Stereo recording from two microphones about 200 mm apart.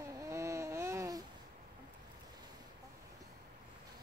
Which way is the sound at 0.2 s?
15° right (ahead or behind).